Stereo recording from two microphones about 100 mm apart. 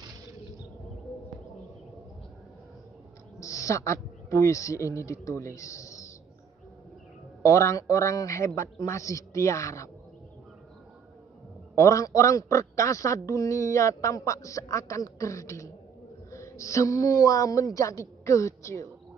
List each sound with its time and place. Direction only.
3.3 s a man's voice: 30° left (ahead or behind)
7.4 s a man's voice: 30° left (ahead or behind)
11.7 s a man's voice: 30° left (ahead or behind)